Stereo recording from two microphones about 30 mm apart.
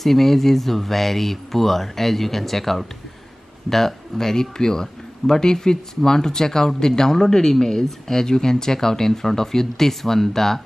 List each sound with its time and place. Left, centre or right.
0.0 s a man's voice: centre